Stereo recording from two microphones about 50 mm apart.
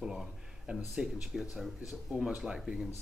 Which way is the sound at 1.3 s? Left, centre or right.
Centre.